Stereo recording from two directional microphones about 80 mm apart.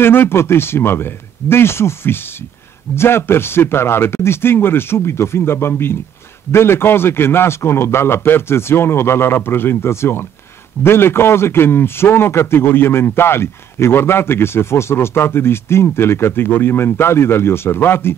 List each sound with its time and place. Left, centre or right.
0.0 s a man's voice: left